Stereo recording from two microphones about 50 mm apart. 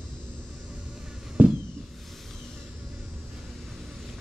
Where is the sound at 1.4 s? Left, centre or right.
Right.